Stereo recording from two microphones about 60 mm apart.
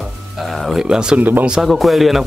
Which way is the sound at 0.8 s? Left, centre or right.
Centre.